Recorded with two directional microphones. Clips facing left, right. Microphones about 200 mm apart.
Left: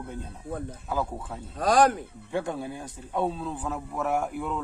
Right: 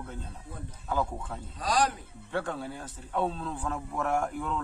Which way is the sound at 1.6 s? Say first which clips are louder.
Left 7 dB; 55° left (ahead or behind).